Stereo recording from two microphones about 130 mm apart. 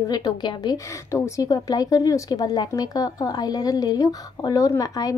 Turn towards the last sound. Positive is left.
turn(degrees=30)  # may be behind; listen again after turning